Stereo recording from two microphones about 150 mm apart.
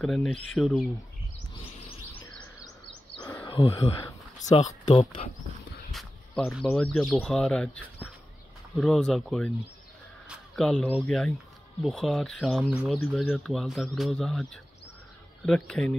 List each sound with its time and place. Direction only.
0.0 s speech: 5° left (ahead or behind)
3.4 s speech: 35° left (ahead or behind)
4.4 s speech: 55° left (ahead or behind)
4.8 s speech: 40° left (ahead or behind)
5.9 s speech: centre (ahead or behind)
10.2 s a sound: centre (ahead or behind)
10.9 s speech: 5° left (ahead or behind)